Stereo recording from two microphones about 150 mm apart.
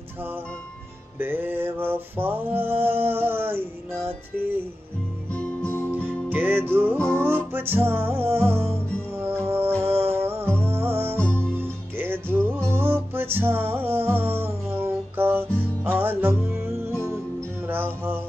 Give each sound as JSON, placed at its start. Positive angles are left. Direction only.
{"t": 1.1, "sound": "mantra", "side_deg": -15}
{"t": 5.3, "sound": "music", "side_deg": 10}
{"t": 6.0, "sound": "music", "side_deg": -10}
{"t": 11.1, "sound": "music", "side_deg": 10}
{"t": 11.5, "sound": "music", "side_deg": -15}